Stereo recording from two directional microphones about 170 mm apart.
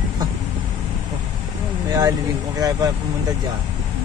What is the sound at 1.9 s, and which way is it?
Speech, 20° right (ahead or behind).